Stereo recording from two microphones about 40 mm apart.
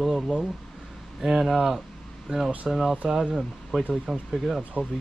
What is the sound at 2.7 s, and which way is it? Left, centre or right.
Speech, centre.